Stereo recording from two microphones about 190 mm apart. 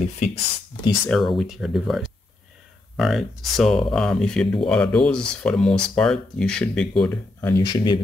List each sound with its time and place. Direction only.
1.0 s speech: centre (ahead or behind)
7.5 s speech: 20° left (ahead or behind)